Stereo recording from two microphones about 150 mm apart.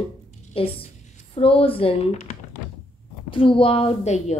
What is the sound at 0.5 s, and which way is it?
A woman's voice, 40° left (ahead or behind).